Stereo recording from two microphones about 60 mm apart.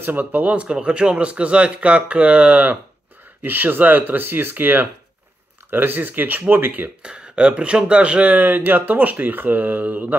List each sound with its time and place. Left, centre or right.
0.0 s speech: right
7.0 s speech: centre